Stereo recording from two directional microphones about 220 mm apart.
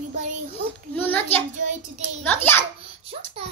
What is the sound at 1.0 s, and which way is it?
Child singing, 10° left (ahead or behind).